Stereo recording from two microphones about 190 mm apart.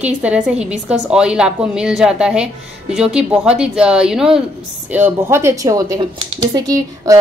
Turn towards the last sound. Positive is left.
turn(degrees=-20)  # may be behind; listen again after turning